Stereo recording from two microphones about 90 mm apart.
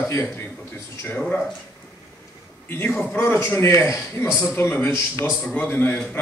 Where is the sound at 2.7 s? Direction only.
25° left (ahead or behind).